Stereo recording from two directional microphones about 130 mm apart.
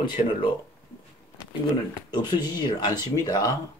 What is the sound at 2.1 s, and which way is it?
Speech, 35° left (ahead or behind).